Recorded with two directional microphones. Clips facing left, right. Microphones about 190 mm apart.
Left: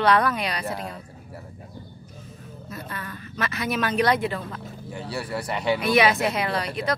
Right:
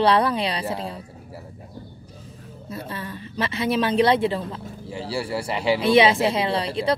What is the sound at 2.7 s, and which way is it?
Speech, 30° right (ahead or behind).